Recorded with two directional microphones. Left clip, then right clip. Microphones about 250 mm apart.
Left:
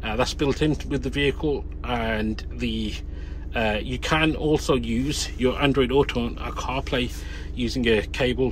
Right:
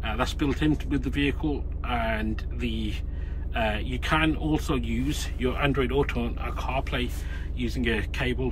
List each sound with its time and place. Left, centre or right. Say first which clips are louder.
0.0 s speech: left 4 dB; centre